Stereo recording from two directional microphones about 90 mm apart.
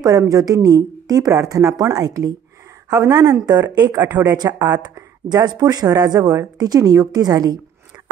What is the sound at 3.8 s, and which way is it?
Speech, 20° right (ahead or behind).